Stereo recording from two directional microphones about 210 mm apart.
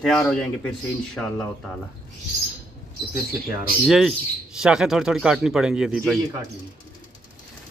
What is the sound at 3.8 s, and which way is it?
A man's voice, centre (ahead or behind).